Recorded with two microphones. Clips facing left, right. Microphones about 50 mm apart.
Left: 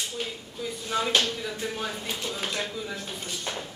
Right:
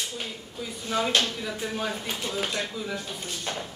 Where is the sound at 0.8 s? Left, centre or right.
Centre.